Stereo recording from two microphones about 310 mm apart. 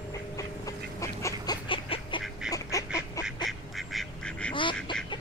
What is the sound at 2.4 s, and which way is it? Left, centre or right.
Duck, centre.